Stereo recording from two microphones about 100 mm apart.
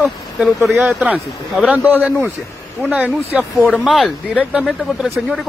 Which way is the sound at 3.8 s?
5° right (ahead or behind).